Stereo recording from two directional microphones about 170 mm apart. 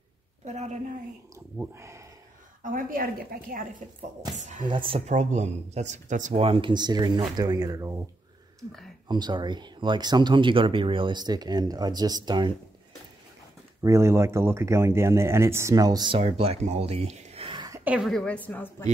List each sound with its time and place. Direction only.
0.5 s speech: 40° right (ahead or behind)
1.6 s speech: 15° right (ahead or behind)
2.6 s a woman's voice: 55° right (ahead or behind)
4.4 s speech: 45° right (ahead or behind)
4.6 s speech: 30° right (ahead or behind); by 6.4 s 45° right (ahead or behind)
6.4 s speech: 30° right (ahead or behind)
9.0 s speech: 25° right (ahead or behind)
13.8 s speech: 15° right (ahead or behind)
16.2 s speech: 35° right (ahead or behind); by 17.8 s 20° right (ahead or behind)
17.8 s a woman's voice: 5° right (ahead or behind)